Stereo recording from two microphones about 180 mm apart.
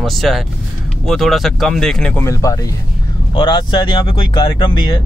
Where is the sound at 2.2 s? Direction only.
20° left (ahead or behind).